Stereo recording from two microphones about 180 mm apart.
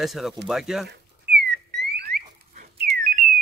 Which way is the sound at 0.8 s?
65° right (ahead or behind).